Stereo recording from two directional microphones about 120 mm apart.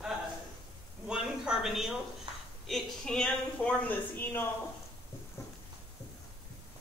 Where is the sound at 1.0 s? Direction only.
5° right (ahead or behind).